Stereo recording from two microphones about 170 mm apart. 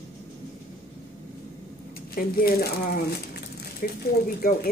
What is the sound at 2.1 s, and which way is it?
Speech, 60° left (ahead or behind).